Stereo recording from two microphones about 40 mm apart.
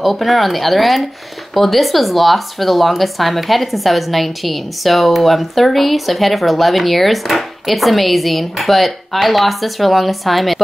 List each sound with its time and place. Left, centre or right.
0.0 s speech: centre